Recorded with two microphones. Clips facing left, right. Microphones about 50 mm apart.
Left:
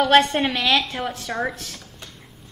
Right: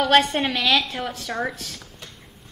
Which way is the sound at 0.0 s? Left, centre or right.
Centre.